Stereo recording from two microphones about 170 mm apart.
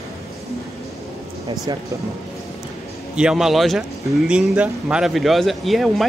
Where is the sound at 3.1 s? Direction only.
5° right (ahead or behind).